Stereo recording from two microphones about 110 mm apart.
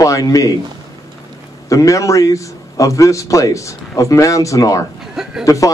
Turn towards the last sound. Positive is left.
turn(degrees=30)  # may be behind; listen again after turning